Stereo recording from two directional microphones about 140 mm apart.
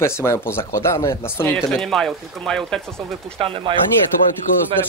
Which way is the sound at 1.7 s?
Centre (ahead or behind).